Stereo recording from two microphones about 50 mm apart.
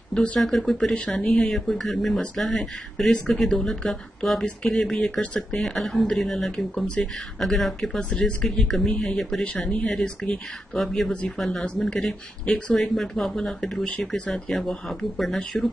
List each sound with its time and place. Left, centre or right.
0.1 s speech: left
0.4 s speech: centre
0.9 s speech: left
1.4 s speech: centre
9.7 s speech: left
10.7 s speech: centre
12.1 s speech: centre
12.7 s speech: centre
13.8 s speech: left
14.3 s speech: centre